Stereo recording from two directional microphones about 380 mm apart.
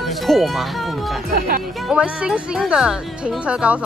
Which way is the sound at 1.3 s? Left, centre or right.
Right.